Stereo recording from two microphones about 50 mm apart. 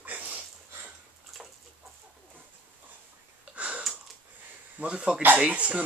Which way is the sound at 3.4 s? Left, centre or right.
Right.